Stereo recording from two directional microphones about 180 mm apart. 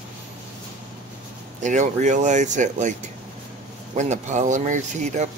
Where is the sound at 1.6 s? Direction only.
40° right (ahead or behind).